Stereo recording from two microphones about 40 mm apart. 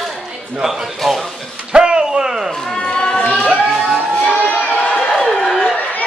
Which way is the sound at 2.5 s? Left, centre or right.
Centre.